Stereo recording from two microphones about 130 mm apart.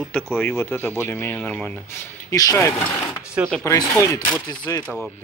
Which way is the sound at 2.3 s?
25° left (ahead or behind).